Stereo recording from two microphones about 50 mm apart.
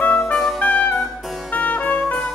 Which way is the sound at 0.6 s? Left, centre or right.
Left.